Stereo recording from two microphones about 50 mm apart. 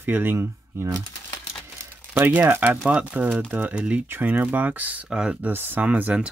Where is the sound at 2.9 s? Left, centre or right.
Right.